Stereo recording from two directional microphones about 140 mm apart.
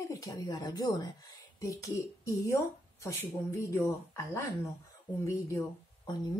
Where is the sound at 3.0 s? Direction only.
20° left (ahead or behind).